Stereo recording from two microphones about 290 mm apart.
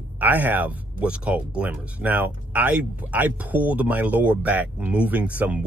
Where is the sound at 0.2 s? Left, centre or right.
Centre.